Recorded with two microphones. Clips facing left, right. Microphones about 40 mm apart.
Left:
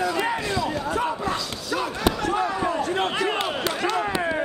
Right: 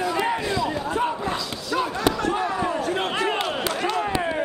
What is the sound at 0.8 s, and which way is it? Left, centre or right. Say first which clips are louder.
Basketball bounce: right 1 dB; right.